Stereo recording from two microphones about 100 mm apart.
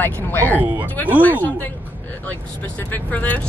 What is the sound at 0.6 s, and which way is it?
Speech, 15° right (ahead or behind).